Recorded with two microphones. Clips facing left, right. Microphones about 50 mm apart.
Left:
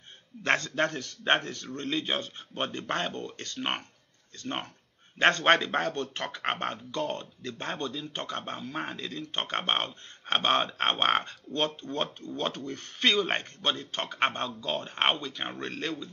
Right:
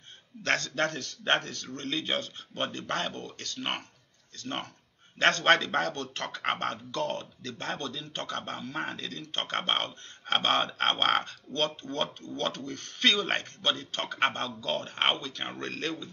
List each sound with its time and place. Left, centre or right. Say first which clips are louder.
0.4 s speech: left 2 dB; left